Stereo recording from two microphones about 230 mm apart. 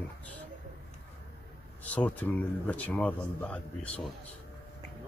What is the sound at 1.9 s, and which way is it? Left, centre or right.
Speech, centre.